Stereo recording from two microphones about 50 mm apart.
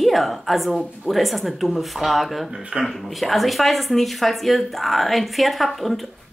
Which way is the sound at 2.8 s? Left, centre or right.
Centre.